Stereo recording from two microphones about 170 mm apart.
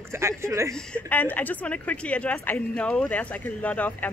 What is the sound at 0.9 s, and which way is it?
Speech, 10° left (ahead or behind).